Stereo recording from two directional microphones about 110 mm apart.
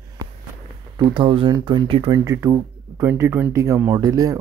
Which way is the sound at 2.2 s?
30° right (ahead or behind).